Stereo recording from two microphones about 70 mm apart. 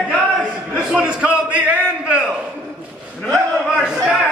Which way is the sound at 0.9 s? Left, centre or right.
Centre.